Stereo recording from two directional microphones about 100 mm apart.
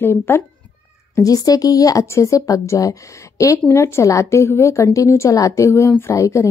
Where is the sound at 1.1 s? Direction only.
35° left (ahead or behind).